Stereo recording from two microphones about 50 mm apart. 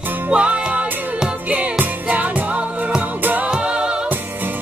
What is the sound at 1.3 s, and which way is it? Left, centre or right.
Music, right.